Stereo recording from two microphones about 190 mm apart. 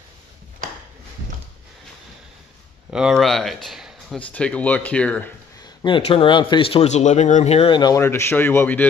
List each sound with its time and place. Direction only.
2.9 s speech: 5° right (ahead or behind)
5.8 s a man's voice: 25° left (ahead or behind); by 8.8 s 10° left (ahead or behind)